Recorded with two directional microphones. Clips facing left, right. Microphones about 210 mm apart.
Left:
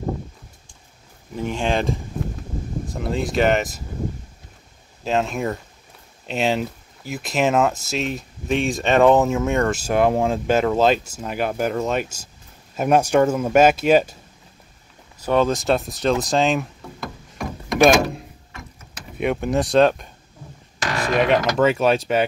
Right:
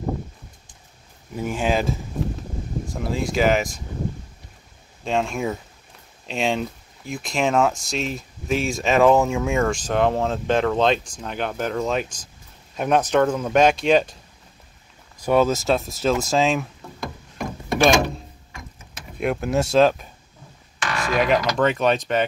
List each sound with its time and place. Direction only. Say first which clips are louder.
1.3 s speech: even; 10° right (ahead or behind)
5.0 s speech: left 1 dB; centre (ahead or behind)
15.2 s speech: even; 5° right (ahead or behind)
17.8 s speech: left 3 dB; centre (ahead or behind)
19.1 s speech: left 1 dB; centre (ahead or behind)
20.8 s a sound: left 2 dB; 40° left (ahead or behind)
21.1 s speech: left 2 dB; centre (ahead or behind)